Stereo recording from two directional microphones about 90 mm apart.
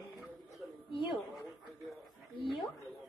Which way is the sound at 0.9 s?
70° left (ahead or behind).